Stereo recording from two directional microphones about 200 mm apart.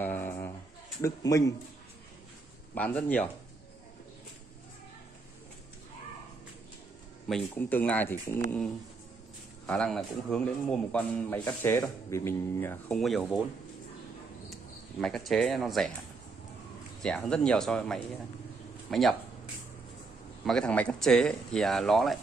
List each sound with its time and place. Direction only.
0.0 s a sound: 10° left (ahead or behind)
1.0 s a man's voice: 15° left (ahead or behind)
2.7 s a man's voice: 10° left (ahead or behind)
7.2 s a man's voice: 5° left (ahead or behind)
14.5 s speech: 5° left (ahead or behind)
17.0 s speech: 5° left (ahead or behind)
18.9 s a sound: centre (ahead or behind)
20.4 s speech: 5° left (ahead or behind)